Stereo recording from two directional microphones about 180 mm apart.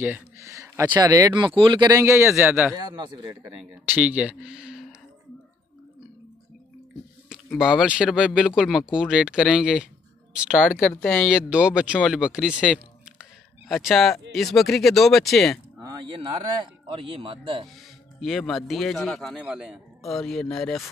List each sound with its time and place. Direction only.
0.0 s speech: 10° right (ahead or behind)
2.9 s a man's voice: 25° right (ahead or behind)
3.7 s speech: 10° right (ahead or behind)
7.2 s speech: 5° right (ahead or behind)
15.8 s speech: 25° right (ahead or behind)
18.2 s speech: centre (ahead or behind)